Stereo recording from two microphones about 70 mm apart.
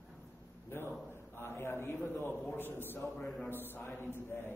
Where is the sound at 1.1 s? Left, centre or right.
Left.